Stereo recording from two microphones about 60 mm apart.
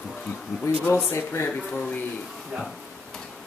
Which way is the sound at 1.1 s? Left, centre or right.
Left.